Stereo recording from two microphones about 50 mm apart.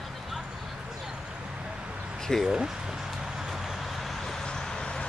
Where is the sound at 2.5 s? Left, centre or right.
Centre.